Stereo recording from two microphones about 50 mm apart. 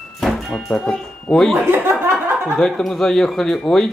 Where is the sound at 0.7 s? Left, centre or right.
Centre.